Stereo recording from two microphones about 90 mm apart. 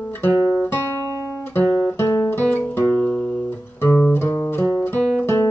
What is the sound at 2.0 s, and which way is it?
Guitar, 30° left (ahead or behind).